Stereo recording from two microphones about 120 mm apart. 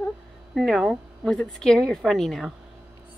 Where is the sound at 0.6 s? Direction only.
Centre (ahead or behind).